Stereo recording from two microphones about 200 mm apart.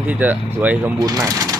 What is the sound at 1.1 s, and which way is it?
Speech, 20° right (ahead or behind).